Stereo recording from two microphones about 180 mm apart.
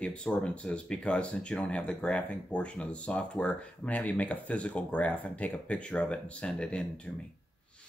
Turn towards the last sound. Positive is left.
turn(degrees=5)  # may be behind; listen again after turning